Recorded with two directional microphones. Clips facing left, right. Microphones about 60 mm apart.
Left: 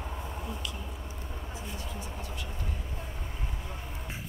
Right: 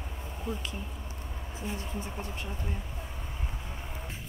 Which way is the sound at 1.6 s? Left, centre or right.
Right.